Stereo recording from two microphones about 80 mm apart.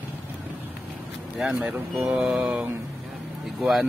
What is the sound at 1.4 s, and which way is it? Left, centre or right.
A man's voice, centre.